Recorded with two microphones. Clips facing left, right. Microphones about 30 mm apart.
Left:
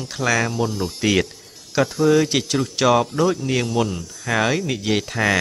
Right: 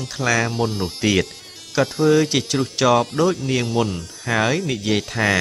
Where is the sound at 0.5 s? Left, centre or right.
Right.